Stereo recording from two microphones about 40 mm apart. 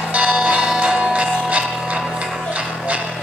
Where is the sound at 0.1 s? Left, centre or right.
Right.